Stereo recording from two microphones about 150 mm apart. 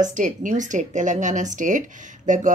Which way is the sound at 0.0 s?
55° right (ahead or behind).